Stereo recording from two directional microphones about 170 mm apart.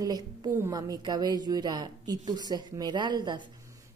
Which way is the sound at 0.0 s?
25° right (ahead or behind).